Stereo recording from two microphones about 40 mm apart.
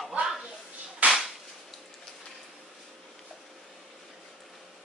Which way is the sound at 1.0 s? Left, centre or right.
Right.